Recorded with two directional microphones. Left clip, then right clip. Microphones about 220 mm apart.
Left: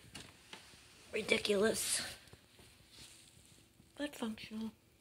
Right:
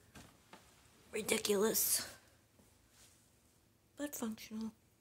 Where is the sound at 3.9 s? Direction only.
10° right (ahead or behind).